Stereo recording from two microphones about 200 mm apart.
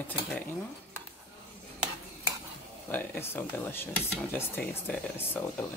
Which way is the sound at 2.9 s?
10° left (ahead or behind).